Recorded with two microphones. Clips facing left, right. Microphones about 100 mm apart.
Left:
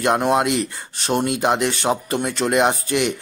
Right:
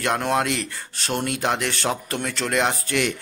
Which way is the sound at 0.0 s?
20° left (ahead or behind).